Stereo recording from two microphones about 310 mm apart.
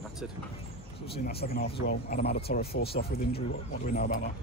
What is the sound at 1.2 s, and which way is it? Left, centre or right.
Speech, left.